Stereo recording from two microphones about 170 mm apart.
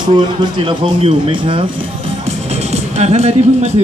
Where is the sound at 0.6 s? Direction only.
30° right (ahead or behind).